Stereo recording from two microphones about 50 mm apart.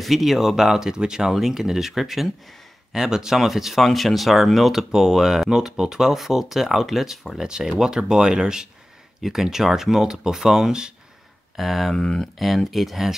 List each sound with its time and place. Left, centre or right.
0.0 s speech: centre
11.9 s speech: centre
12.4 s speech: centre